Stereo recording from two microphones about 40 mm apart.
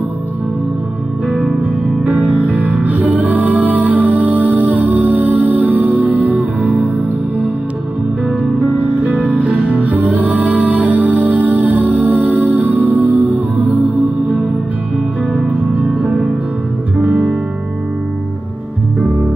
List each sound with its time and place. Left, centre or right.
2.0 s music: right
2.4 s music: right
9.2 s music: right